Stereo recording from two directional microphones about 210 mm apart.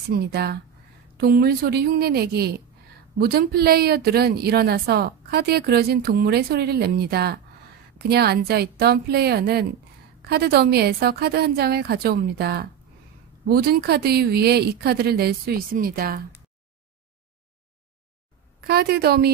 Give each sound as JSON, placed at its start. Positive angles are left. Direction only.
{"t": 0.1, "sound": "speech", "side_deg": -50}
{"t": 18.6, "sound": "speech", "side_deg": -50}